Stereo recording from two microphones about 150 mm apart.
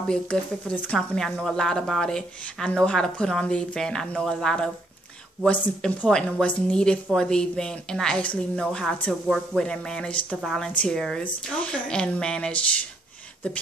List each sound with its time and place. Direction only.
0.1 s a woman's voice: 5° left (ahead or behind)